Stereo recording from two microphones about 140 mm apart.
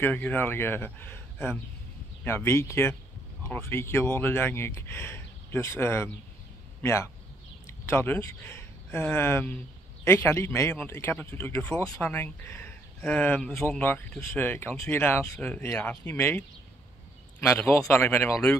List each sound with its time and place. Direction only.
0.0 s a man's voice: 10° left (ahead or behind)